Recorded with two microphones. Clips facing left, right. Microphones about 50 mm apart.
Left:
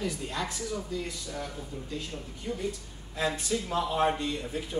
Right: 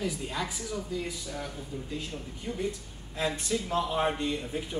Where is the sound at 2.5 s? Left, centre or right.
Centre.